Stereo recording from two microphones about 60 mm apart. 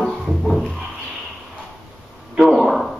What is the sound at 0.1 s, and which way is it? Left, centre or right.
Music, centre.